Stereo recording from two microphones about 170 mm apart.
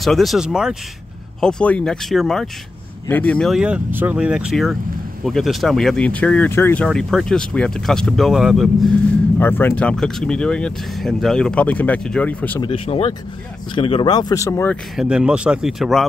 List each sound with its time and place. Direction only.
0.0 s speech: centre (ahead or behind)
9.4 s speech: 10° left (ahead or behind)
12.6 s speech: 30° left (ahead or behind); by 14.8 s 15° left (ahead or behind)
15.0 s speech: 5° right (ahead or behind)